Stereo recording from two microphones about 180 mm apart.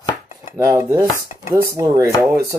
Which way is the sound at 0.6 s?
15° right (ahead or behind).